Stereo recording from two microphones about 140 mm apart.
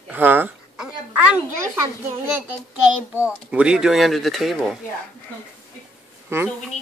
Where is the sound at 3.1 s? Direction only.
10° right (ahead or behind).